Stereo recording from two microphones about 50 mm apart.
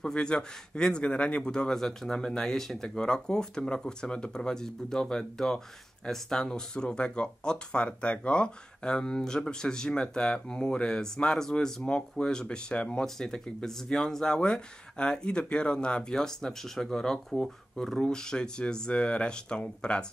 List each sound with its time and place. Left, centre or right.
0.0 s speech: centre